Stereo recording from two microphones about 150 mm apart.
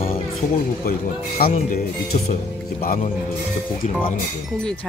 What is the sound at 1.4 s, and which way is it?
Speech, 80° left.